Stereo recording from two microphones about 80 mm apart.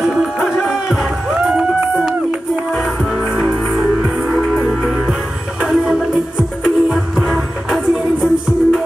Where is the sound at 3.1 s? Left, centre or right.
Centre.